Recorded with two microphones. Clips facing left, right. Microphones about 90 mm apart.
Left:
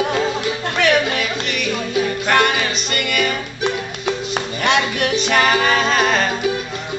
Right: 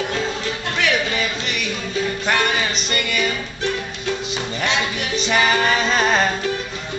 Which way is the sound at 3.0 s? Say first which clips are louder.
Left 4 dB; 60° left (ahead or behind).